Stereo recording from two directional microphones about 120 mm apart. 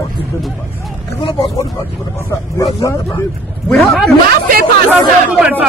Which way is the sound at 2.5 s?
30° left (ahead or behind).